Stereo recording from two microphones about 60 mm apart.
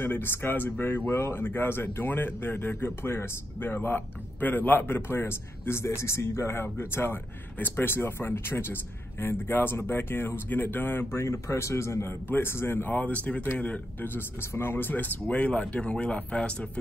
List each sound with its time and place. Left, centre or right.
0.0 s a man's voice: left
1.1 s a man's voice: left
11.1 s a man's voice: left
14.5 s speech: left; by 16.5 s centre